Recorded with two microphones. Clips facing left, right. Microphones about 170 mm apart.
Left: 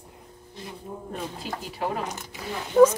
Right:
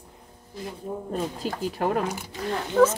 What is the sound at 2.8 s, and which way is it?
Speech, 10° left (ahead or behind).